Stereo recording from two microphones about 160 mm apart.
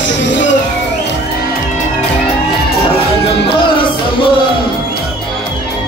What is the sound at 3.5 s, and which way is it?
Music, 30° left (ahead or behind).